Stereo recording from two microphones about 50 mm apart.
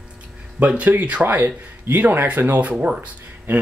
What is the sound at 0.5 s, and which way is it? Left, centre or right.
Speech, right.